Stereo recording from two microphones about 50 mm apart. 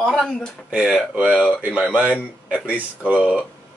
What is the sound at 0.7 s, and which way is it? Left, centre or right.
Speech, centre.